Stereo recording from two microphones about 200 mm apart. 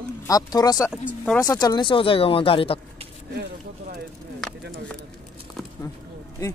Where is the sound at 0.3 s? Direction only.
20° left (ahead or behind).